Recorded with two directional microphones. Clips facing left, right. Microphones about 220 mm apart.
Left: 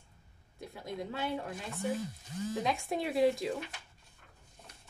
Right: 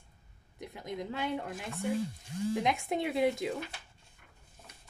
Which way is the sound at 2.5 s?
20° right (ahead or behind).